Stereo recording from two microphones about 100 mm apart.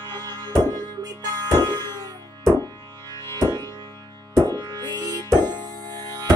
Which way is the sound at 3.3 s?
40° right (ahead or behind).